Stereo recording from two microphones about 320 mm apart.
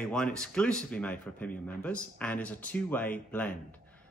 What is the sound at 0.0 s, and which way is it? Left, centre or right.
Speech, centre.